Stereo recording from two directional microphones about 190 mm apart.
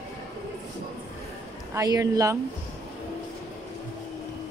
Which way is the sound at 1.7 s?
15° right (ahead or behind).